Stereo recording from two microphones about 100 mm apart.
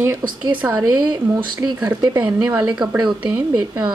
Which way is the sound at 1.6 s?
45° right (ahead or behind).